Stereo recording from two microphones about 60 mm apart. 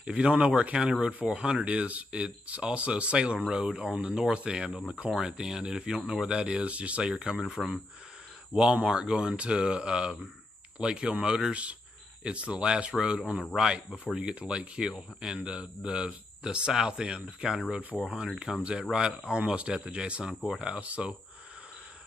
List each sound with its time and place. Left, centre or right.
0.0 s a man's voice: centre
20.3 s speech: centre
20.6 s speech: centre